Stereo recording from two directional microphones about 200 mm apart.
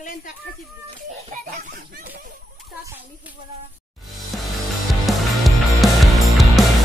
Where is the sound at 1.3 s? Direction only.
40° right (ahead or behind).